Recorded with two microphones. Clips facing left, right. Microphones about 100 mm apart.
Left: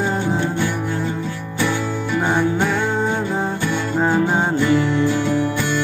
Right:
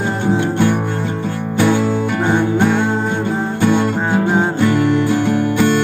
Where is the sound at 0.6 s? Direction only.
55° right (ahead or behind).